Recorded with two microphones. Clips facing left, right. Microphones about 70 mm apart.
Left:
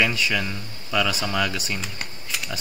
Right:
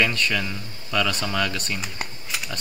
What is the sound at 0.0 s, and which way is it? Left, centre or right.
Speech, centre.